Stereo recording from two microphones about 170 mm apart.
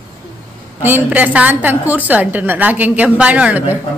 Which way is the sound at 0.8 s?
10° right (ahead or behind).